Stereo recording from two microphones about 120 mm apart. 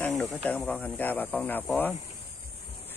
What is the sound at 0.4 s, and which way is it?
Speech, 10° left (ahead or behind).